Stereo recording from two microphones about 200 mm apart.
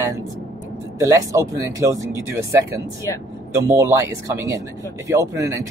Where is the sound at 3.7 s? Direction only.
15° right (ahead or behind).